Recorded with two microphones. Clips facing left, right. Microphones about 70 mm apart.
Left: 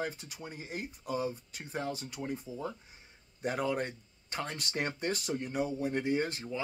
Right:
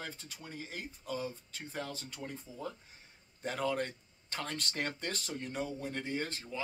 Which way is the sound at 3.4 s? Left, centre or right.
Centre.